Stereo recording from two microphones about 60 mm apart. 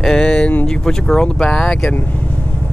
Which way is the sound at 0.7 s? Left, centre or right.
Centre.